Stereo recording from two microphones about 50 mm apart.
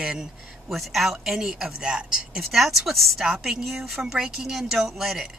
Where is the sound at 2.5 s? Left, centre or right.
Centre.